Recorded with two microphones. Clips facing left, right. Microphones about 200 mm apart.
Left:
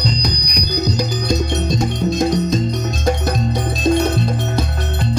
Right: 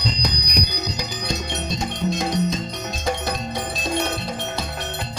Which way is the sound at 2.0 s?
40° left (ahead or behind).